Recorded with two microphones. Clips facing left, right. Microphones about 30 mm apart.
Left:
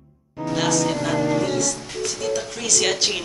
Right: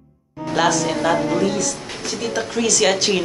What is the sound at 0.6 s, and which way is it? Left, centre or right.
Speech, centre.